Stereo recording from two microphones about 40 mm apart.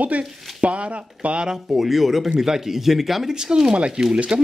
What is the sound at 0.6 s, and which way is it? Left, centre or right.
Speech, right.